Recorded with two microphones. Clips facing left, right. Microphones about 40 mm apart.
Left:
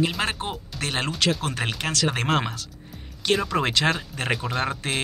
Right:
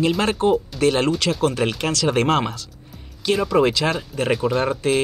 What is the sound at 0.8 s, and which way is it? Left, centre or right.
Speech, left.